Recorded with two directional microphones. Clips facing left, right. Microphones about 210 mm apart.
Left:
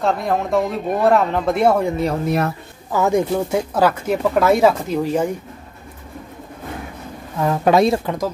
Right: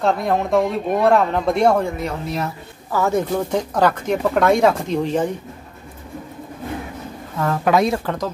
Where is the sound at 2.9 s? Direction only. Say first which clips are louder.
Left 2 dB; 15° left (ahead or behind).